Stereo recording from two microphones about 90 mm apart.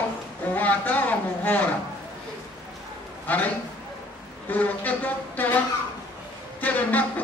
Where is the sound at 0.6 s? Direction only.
20° left (ahead or behind).